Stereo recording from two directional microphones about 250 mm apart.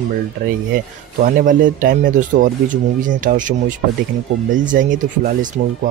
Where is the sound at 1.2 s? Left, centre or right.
Right.